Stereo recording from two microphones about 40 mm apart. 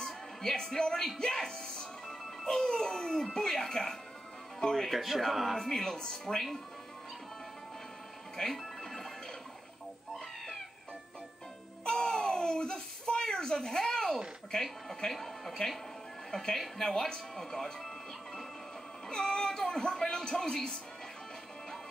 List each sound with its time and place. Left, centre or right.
0.0 s a woman's voice: centre
4.9 s speech: centre
5.6 s speech: centre
8.4 s television: centre
10.1 s cat: centre
11.9 s a sound: centre
13.3 s a child's voice: centre